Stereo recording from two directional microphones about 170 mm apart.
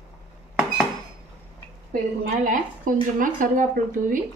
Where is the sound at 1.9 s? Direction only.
50° right (ahead or behind).